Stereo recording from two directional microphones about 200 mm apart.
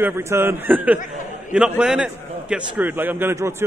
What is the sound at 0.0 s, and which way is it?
A man's voice, 15° right (ahead or behind).